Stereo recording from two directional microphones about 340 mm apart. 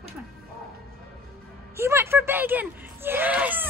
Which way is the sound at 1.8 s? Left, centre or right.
Centre.